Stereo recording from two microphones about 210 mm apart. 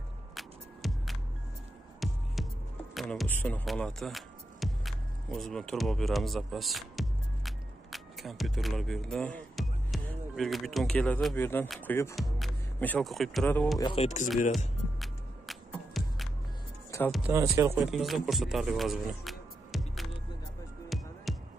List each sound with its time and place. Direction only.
0.3 s music: centre (ahead or behind)
2.9 s speech: centre (ahead or behind)
13.8 s speech: 30° left (ahead or behind)
15.0 s music: centre (ahead or behind)
16.9 s music: 15° left (ahead or behind)
17.3 s speech: 15° right (ahead or behind)
17.9 s speech: centre (ahead or behind)
20.9 s music: centre (ahead or behind)